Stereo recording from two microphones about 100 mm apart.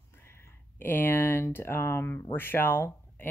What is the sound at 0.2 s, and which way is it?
Speech, 25° left (ahead or behind).